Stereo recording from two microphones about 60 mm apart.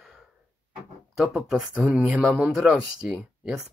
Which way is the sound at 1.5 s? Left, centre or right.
Centre.